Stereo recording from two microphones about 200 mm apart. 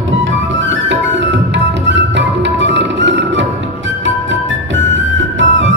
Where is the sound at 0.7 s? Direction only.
60° right (ahead or behind).